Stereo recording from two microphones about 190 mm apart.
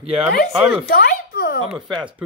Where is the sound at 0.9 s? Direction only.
50° left (ahead or behind).